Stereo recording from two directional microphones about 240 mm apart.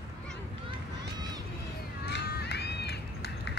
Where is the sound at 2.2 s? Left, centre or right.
Left.